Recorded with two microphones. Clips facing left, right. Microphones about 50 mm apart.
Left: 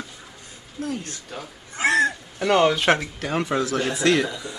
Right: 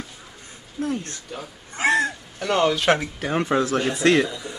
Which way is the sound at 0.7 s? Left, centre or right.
Right.